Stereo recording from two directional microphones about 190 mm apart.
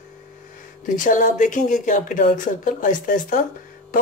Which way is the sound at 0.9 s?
45° left (ahead or behind).